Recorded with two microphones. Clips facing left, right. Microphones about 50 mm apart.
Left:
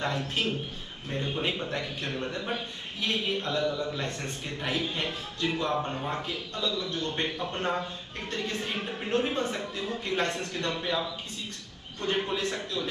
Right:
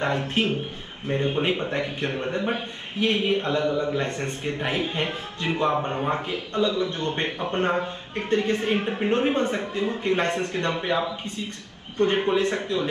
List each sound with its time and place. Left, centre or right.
0.0 s a man's voice: right